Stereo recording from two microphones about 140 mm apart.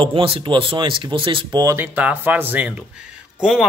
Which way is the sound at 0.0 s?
40° right (ahead or behind).